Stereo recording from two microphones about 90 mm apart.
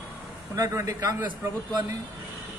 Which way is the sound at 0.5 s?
40° right (ahead or behind).